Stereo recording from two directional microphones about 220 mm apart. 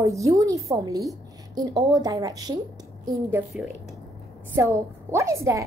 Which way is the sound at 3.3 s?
5° right (ahead or behind).